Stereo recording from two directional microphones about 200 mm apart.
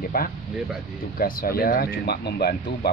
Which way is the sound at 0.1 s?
45° left (ahead or behind).